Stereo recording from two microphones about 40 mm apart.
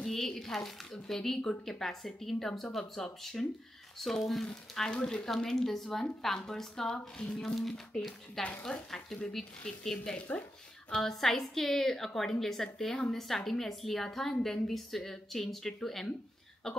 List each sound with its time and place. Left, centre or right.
0.0 s a woman's voice: centre
4.9 s a woman's voice: centre
6.9 s speech: left
7.4 s a woman's voice: centre
8.9 s a woman's voice: left